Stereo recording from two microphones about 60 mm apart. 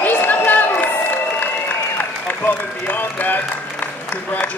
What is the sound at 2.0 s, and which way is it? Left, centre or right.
Applause, left.